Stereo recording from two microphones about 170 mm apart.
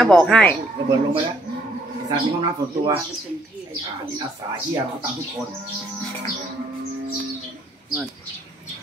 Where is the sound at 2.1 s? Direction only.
25° right (ahead or behind).